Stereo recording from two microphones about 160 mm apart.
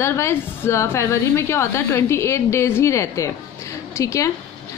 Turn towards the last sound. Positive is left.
turn(degrees=20)  # may be behind; listen again after turning